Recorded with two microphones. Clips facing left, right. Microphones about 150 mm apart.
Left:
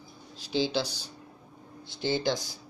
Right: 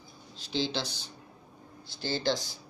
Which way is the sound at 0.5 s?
10° left (ahead or behind).